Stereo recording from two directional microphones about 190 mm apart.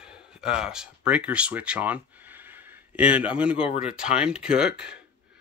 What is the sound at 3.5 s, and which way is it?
Speech, 30° left (ahead or behind).